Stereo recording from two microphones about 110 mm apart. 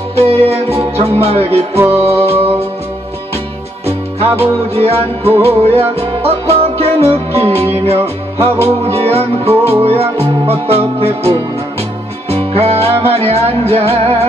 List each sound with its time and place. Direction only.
0.3 s music: 65° right (ahead or behind)
1.8 s music: 20° right (ahead or behind)
3.8 s music: 65° right (ahead or behind)
12.3 s music: 65° right (ahead or behind)